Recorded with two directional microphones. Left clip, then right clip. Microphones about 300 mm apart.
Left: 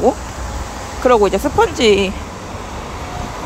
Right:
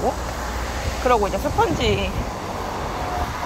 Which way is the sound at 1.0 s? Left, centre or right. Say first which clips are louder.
Left 7 dB; centre.